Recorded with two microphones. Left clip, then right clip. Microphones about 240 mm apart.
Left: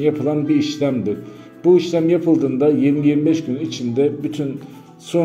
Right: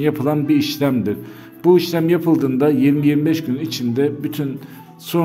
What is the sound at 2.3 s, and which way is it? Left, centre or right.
A man's voice, right.